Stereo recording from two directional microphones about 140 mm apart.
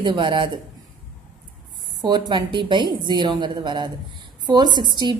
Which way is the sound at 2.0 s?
30° right (ahead or behind).